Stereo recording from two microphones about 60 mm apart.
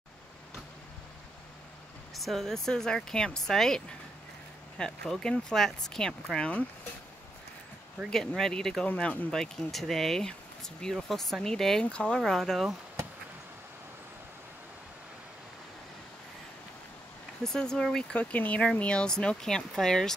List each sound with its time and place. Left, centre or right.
2.1 s speech: centre
8.1 s speech: centre
12.2 s speech: centre
17.4 s speech: centre
18.1 s speech: left; by 20.2 s centre